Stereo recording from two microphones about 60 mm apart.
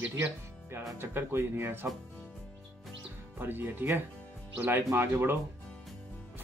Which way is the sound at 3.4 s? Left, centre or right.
Right.